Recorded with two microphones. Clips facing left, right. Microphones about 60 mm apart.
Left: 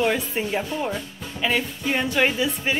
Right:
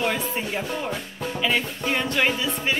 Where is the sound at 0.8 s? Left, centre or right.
Right.